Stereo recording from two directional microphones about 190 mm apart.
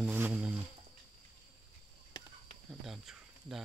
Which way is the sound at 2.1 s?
20° left (ahead or behind).